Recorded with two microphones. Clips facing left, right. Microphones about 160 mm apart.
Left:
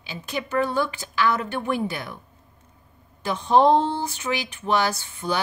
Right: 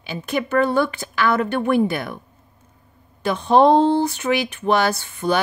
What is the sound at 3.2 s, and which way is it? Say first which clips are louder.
Speech: right 3 dB; 65° right (ahead or behind).